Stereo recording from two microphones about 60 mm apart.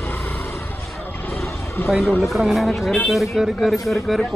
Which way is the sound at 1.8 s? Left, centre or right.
Left.